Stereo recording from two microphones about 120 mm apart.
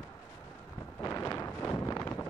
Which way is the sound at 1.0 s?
25° left (ahead or behind).